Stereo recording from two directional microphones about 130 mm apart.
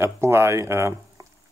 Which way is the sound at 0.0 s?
20° right (ahead or behind).